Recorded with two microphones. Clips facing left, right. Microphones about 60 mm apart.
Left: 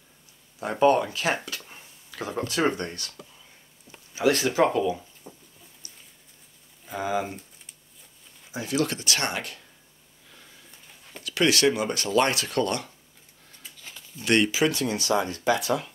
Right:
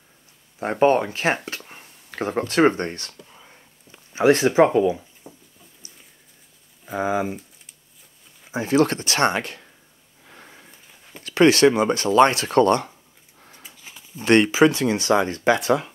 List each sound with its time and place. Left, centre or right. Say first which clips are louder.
0.6 s speech: right 3 dB; right
2.0 s speech: right 6 dB; right
3.3 s whispering: right 6 dB; right
4.1 s speech: right 6 dB; right
5.2 s a sound: right 2 dB; centre
7.0 s speech: right 4 dB; right
8.5 s speech: right 8 dB; right
10.2 s a sound: right 6 dB; right
11.2 s speech: right 7 dB; right
13.5 s sniff: right 1 dB; centre
14.1 s speech: right 6 dB; right